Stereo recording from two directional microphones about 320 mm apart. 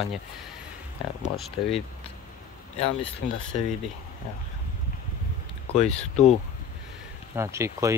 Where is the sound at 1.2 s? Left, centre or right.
Centre.